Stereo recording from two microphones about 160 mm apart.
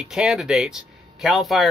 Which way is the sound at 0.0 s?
5° right (ahead or behind).